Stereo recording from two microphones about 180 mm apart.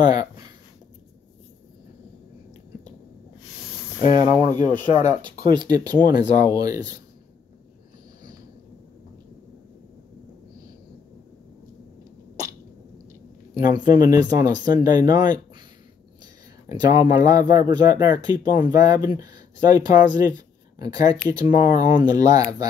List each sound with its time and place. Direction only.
0.0 s a sound: 20° right (ahead or behind)
4.2 s speech: 40° left (ahead or behind)
4.6 s speech: 25° right (ahead or behind)
14.0 s speech: 20° right (ahead or behind)
16.6 s speech: 20° right (ahead or behind)